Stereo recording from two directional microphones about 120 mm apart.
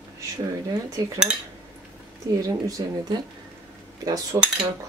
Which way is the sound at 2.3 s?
30° right (ahead or behind).